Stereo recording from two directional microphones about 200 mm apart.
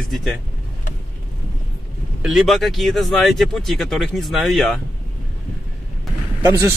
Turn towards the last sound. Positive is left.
turn(degrees=-15)  # may be behind; listen again after turning